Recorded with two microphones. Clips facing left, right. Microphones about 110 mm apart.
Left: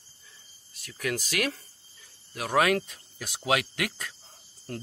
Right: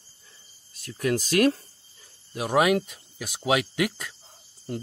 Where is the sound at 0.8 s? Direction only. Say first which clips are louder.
Right 6 dB; 30° right (ahead or behind).